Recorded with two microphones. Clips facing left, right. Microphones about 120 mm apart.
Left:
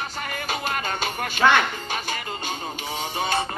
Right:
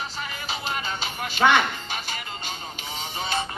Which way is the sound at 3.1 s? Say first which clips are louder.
Left 3 dB; 45° left (ahead or behind).